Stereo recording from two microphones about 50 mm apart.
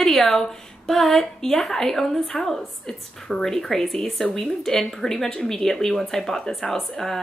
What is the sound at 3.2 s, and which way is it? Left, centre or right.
Speech, centre.